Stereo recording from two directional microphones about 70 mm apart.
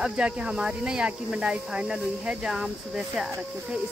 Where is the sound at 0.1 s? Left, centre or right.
Centre.